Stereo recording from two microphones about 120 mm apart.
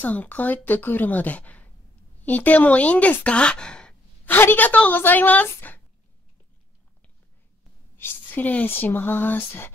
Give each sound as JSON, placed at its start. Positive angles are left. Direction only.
{"t": 0.0, "sound": "speech", "side_deg": 15}
{"t": 8.0, "sound": "speech", "side_deg": 15}